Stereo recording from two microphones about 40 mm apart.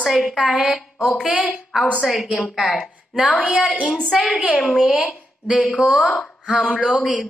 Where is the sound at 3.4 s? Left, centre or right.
Right.